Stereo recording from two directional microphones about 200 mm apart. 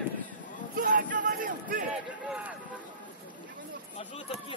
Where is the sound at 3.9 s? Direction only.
30° left (ahead or behind).